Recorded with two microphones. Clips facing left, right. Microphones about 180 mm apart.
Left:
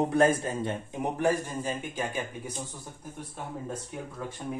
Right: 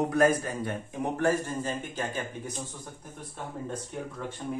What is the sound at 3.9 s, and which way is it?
Speech, 5° left (ahead or behind).